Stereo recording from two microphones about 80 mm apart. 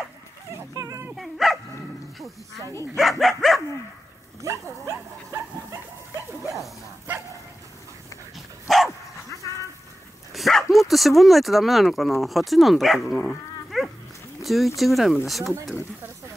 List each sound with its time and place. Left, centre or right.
0.7 s a sound: right
1.1 s dog: centre
2.1 s speech: centre
4.4 s speech: right
8.6 s dog: centre
10.3 s speech: centre
14.4 s a sound: centre
14.8 s speech: centre